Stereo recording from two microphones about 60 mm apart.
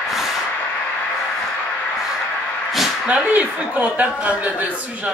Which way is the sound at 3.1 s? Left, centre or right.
Right.